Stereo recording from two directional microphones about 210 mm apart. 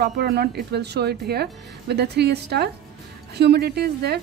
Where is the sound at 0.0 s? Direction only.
50° right (ahead or behind).